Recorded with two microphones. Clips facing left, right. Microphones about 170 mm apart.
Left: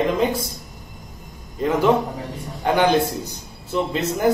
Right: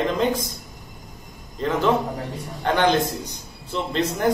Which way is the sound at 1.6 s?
10° left (ahead or behind).